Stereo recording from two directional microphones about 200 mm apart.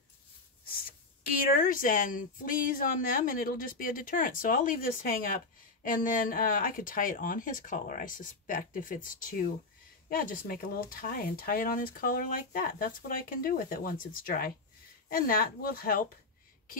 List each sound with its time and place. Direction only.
0.7 s speech: 45° left (ahead or behind)